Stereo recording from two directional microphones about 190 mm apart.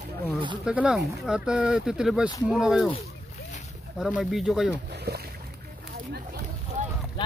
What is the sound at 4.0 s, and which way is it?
Speech, centre (ahead or behind).